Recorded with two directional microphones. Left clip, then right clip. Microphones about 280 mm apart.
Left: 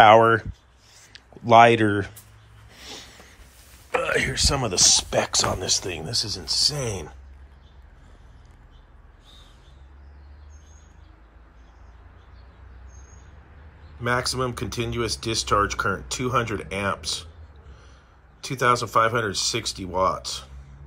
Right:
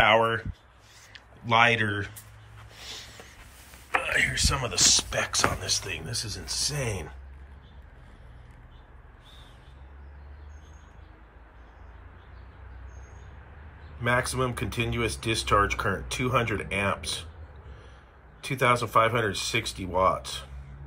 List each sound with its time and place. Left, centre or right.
1.1 s speech: centre
2.7 s a sound: left
4.2 s speech: centre
14.0 s speech: centre
18.4 s speech: centre